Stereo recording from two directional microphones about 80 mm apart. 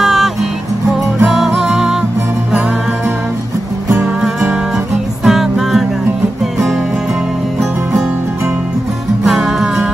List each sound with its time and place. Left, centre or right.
0.0 s music: centre
5.2 s music: centre
9.2 s music: centre